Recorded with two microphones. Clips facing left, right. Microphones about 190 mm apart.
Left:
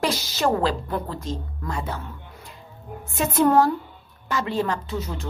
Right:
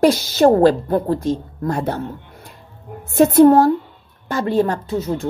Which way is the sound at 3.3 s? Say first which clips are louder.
Right 7 dB; 35° right (ahead or behind).